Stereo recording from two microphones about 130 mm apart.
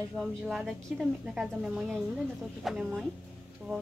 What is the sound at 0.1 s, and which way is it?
Speech, centre (ahead or behind).